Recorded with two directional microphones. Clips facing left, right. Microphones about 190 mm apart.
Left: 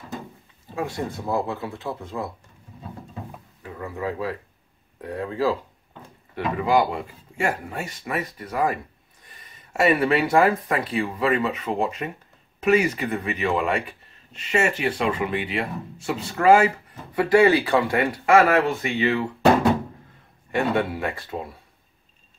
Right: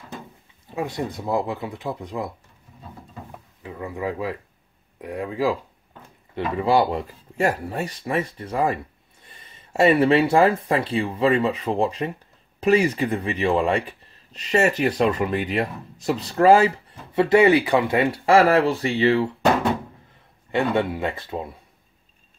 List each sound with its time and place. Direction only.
0.7 s speech: 20° right (ahead or behind)
3.6 s speech: 15° right (ahead or behind)
6.3 s speech: 30° right (ahead or behind)
20.5 s speech: 20° right (ahead or behind)